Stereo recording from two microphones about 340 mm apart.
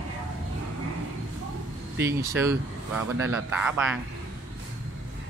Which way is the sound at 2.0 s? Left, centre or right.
Centre.